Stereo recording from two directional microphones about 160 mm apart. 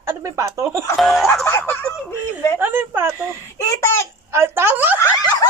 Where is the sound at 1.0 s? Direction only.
Centre (ahead or behind).